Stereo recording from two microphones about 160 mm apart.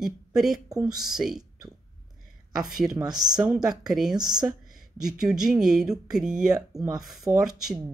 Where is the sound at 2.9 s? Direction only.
25° right (ahead or behind).